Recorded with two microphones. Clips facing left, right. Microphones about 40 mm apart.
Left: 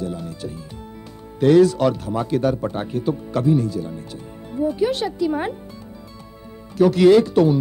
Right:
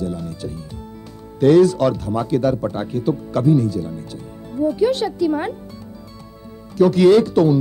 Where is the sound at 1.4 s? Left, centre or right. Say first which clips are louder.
Right 1 dB; centre.